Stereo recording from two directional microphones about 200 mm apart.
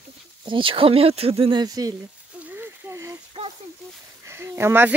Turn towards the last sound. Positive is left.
turn(degrees=-10)  # may be behind; listen again after turning